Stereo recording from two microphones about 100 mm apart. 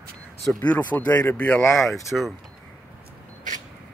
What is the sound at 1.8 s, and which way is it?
Speech, centre (ahead or behind).